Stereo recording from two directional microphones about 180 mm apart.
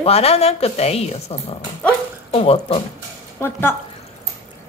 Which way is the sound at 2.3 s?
35° left (ahead or behind).